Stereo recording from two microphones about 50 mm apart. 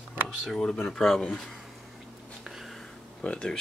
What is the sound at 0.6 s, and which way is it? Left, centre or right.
Speech, centre.